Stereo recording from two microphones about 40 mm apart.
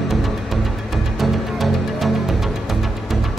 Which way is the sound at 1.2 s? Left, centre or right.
Centre.